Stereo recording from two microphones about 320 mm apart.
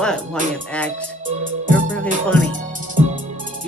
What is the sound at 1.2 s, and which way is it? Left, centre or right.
Music, right.